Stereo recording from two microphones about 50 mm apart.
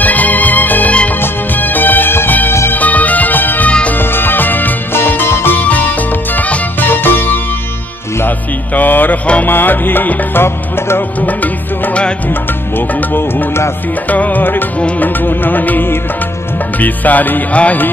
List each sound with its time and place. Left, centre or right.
0.0 s music: left
5.6 s music: left
8.7 s music: left
11.1 s music: left
12.3 s music: left
14.0 s music: left